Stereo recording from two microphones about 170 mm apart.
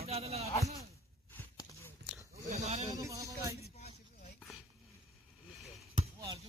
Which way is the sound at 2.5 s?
40° right (ahead or behind).